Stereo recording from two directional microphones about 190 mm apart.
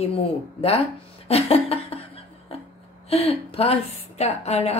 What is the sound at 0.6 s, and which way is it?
Speech, 30° left (ahead or behind).